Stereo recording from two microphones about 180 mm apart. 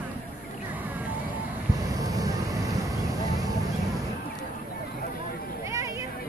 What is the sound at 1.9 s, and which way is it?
Vehicle, 20° right (ahead or behind).